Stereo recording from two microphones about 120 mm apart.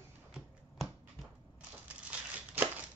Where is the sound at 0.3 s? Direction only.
5° right (ahead or behind).